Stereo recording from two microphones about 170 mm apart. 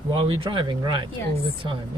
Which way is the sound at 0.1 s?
30° right (ahead or behind).